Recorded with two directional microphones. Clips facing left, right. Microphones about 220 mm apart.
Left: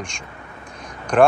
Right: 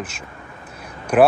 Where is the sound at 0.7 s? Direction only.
5° right (ahead or behind).